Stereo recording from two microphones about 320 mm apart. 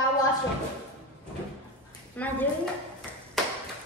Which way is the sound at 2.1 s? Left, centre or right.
Centre.